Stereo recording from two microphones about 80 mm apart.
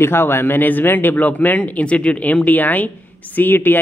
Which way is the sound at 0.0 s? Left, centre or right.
Left.